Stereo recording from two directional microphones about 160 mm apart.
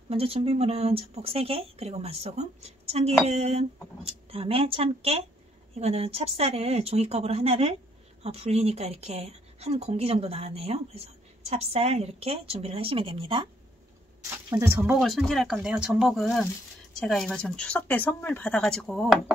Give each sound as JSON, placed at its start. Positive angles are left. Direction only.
{"t": 0.1, "sound": "a woman's voice", "side_deg": -40}
{"t": 14.5, "sound": "speech", "side_deg": -15}
{"t": 15.0, "sound": "speech", "side_deg": 0}